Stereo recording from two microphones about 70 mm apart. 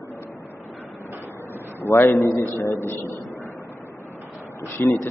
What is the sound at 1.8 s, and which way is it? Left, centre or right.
A man's voice, left.